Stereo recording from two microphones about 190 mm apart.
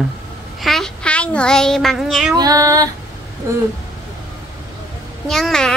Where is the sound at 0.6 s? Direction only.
Centre (ahead or behind).